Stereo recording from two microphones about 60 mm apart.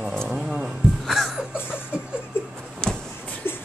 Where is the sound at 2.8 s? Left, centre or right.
Centre.